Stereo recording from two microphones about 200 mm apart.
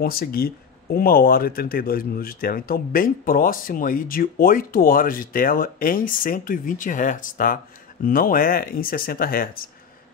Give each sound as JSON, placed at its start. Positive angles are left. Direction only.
{"t": 0.0, "sound": "speech", "side_deg": 50}